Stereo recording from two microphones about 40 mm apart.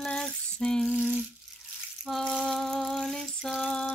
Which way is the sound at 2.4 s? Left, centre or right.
Centre.